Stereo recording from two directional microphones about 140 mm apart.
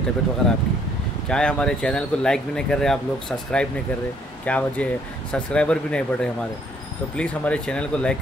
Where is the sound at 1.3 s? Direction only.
5° left (ahead or behind).